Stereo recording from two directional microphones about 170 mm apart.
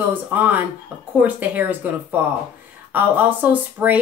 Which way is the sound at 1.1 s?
10° right (ahead or behind).